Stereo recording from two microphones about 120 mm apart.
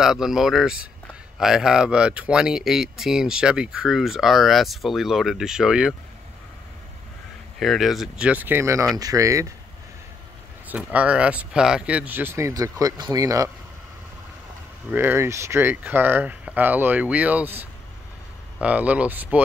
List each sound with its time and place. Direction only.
0.0 s speech: 5° right (ahead or behind)
7.5 s speech: centre (ahead or behind); by 9.5 s 25° right (ahead or behind)
10.7 s speech: 10° right (ahead or behind); by 13.5 s 30° right (ahead or behind)
14.9 s speech: 15° right (ahead or behind)